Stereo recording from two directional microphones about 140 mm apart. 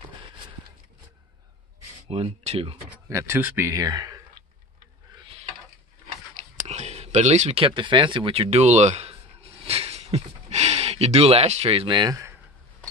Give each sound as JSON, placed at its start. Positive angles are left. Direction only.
{"t": 2.0, "sound": "speech", "side_deg": -45}
{"t": 3.1, "sound": "speech", "side_deg": -20}
{"t": 6.7, "sound": "a sound", "side_deg": -50}
{"t": 12.0, "sound": "speech", "side_deg": -25}